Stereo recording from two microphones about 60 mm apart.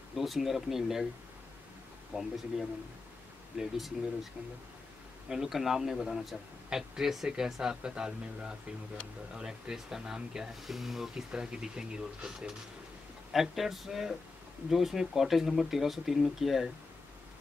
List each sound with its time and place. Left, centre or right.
0.1 s speech: centre
2.1 s speech: centre
3.5 s speech: centre
5.3 s speech: centre